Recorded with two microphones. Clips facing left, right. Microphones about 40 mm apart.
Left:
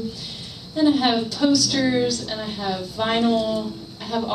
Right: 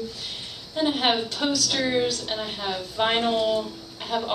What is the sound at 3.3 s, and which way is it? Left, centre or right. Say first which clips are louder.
Speech: left 1 dB; right.